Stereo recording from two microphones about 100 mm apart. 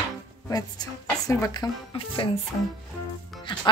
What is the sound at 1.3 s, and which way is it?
Speech, 30° left (ahead or behind).